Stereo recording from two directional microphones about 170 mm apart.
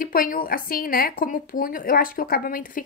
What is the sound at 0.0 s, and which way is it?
A woman's voice, 55° left (ahead or behind).